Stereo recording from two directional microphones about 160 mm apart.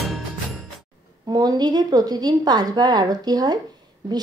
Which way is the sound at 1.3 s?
25° right (ahead or behind).